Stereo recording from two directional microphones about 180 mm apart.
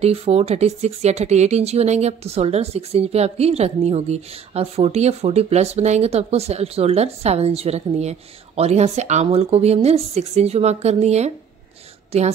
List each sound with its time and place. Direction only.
0.0 s speech: 35° right (ahead or behind)